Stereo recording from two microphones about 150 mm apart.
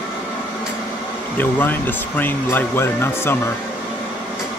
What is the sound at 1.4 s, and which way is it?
Speech, 10° left (ahead or behind).